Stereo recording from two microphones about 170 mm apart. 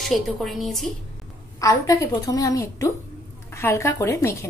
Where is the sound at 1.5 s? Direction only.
20° left (ahead or behind).